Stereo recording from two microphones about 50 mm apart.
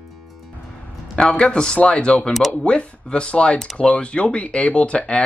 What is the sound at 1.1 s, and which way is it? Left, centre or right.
Speech, centre.